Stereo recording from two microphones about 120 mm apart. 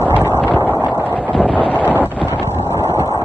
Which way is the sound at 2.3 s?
40° right (ahead or behind).